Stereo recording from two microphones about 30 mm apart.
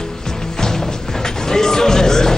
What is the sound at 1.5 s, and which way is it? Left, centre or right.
Speech, centre.